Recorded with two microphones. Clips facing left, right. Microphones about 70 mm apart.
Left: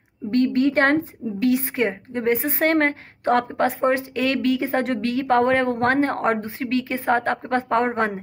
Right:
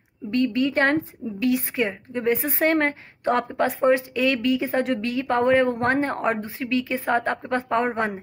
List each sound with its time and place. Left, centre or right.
0.3 s a woman's voice: left